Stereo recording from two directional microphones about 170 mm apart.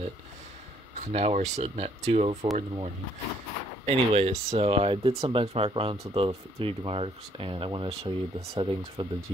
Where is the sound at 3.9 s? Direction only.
35° right (ahead or behind).